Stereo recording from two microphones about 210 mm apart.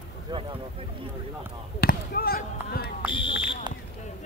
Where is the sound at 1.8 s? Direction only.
45° left (ahead or behind).